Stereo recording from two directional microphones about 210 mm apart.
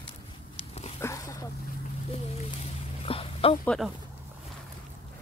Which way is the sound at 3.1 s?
25° left (ahead or behind).